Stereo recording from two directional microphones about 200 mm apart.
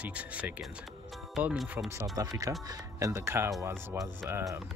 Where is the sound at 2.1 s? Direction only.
15° right (ahead or behind).